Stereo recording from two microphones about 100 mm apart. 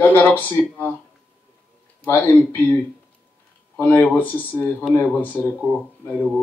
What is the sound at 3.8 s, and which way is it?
Speech, 25° left (ahead or behind).